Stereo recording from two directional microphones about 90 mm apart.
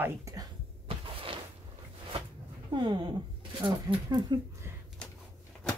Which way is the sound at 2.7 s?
55° right (ahead or behind).